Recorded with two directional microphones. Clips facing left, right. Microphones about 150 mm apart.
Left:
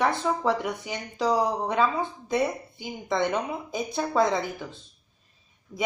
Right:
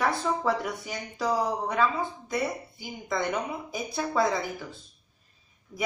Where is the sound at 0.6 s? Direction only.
20° left (ahead or behind).